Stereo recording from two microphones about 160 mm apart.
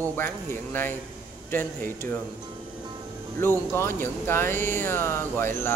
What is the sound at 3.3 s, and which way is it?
Speech, 15° left (ahead or behind).